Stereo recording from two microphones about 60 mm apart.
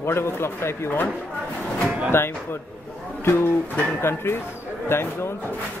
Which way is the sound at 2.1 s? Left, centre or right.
Left.